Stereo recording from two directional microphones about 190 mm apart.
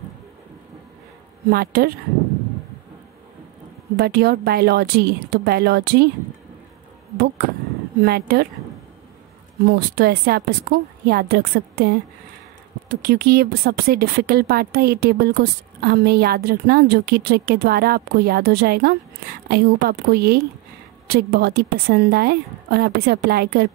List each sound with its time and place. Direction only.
1.5 s speech: 55° right (ahead or behind)
3.9 s speech: 55° right (ahead or behind)
8.0 s speech: 55° right (ahead or behind)
9.7 s speech: 55° right (ahead or behind)